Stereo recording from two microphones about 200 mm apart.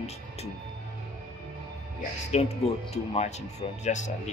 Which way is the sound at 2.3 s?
30° left (ahead or behind).